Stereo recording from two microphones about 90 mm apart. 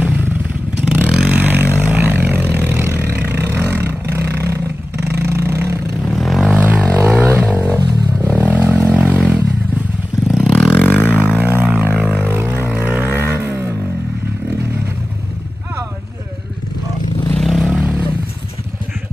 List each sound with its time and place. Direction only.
0.0 s motorcycle: 15° right (ahead or behind)
0.8 s vehicle: 15° right (ahead or behind)
6.0 s vehicle: centre (ahead or behind)
6.5 s a sound: 20° right (ahead or behind)
8.2 s vehicle: 20° right (ahead or behind)
10.2 s vehicle: 5° right (ahead or behind)
11.2 s a sound: 20° right (ahead or behind)
12.3 s vehicle: 25° right (ahead or behind)
17.4 s vehicle: centre (ahead or behind)
17.6 s a sound: 15° right (ahead or behind)